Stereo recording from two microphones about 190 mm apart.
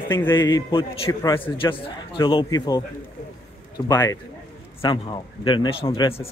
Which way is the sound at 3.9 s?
15° left (ahead or behind).